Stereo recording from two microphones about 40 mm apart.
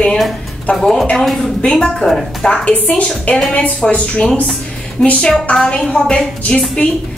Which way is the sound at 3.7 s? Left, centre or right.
Left.